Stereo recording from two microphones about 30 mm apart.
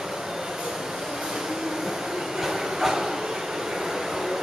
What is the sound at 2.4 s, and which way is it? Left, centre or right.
Train, centre.